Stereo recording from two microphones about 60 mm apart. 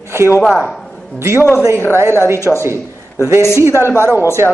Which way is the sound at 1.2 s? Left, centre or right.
Right.